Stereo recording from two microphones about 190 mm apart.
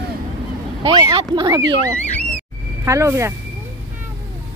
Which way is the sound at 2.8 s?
15° right (ahead or behind).